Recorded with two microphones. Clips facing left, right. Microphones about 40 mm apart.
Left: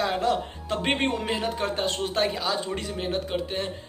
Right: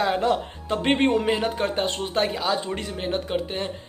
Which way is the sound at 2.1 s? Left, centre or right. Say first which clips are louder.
Right 4 dB; centre.